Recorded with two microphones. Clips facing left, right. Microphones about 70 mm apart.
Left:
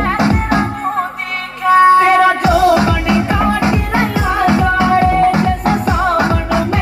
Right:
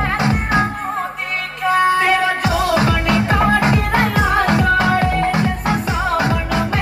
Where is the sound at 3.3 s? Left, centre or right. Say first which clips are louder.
Left 1 dB; centre.